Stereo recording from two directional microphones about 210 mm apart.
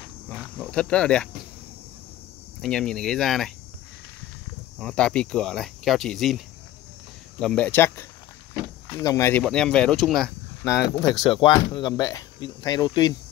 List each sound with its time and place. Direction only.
0.3 s speech: 5° left (ahead or behind)
2.6 s speech: 5° left (ahead or behind)
4.7 s speech: 5° left (ahead or behind)
10.8 s speech: 15° left (ahead or behind)